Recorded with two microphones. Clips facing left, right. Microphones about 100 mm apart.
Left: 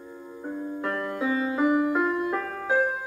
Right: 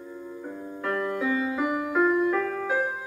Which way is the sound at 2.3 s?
30° left (ahead or behind).